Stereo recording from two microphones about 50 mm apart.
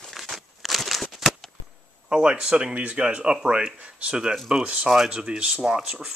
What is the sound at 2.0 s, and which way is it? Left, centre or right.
A man's voice, centre.